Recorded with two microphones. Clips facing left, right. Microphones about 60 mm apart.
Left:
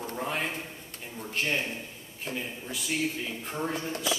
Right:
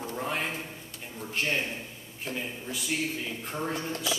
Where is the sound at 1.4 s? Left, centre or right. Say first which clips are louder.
Even; centre.